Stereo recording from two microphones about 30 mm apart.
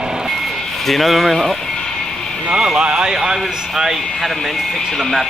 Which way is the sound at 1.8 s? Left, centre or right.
Left.